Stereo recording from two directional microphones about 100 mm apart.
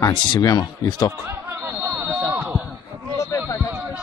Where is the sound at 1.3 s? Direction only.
30° right (ahead or behind).